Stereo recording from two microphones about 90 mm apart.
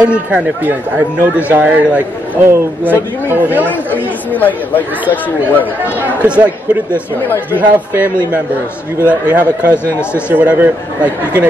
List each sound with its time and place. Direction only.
0.0 s speech: 15° right (ahead or behind)
3.6 s speech: 20° left (ahead or behind)
5.9 s speech: 15° right (ahead or behind)
6.9 s speech: 25° left (ahead or behind)
9.3 s speech: 20° right (ahead or behind)